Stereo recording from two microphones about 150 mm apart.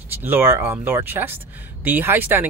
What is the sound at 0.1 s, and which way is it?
Speech, 15° right (ahead or behind).